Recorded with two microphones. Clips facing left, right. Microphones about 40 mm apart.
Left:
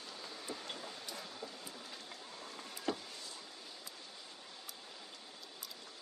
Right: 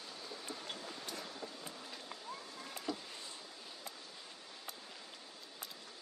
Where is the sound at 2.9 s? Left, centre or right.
Left.